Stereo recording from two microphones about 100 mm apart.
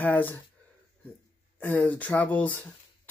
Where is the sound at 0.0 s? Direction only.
20° left (ahead or behind).